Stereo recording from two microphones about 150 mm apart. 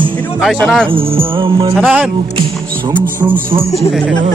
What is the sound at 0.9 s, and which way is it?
Music, 35° right (ahead or behind).